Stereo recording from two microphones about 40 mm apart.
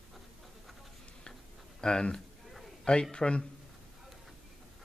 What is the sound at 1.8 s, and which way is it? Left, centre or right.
Speech, left.